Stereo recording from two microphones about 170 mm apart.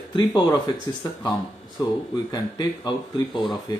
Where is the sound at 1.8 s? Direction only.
25° left (ahead or behind).